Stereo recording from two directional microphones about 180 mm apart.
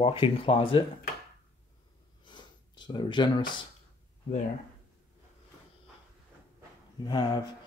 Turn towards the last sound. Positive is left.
turn(degrees=25)  # may be behind; listen again after turning